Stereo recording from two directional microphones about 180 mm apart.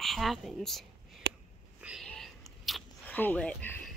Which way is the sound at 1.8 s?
Centre (ahead or behind).